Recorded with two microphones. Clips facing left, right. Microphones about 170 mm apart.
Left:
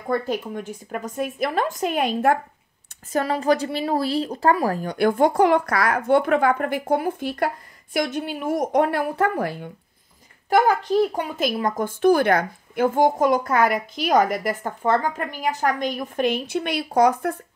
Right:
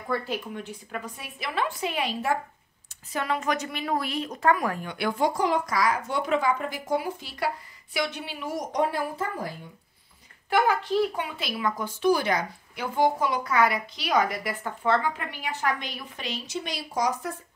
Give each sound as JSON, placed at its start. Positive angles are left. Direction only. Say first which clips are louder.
{"t": 0.1, "sound": "speech", "louder": "left 6 dB", "side_deg": 45}
{"t": 10.5, "sound": "speech", "louder": "left 5 dB", "side_deg": 40}